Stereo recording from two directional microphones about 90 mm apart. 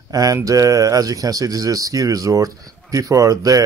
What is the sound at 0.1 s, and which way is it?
Speech, 40° right (ahead or behind).